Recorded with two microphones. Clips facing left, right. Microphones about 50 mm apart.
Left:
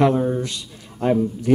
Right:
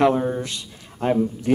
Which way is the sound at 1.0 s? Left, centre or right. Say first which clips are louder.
Left 2 dB; right.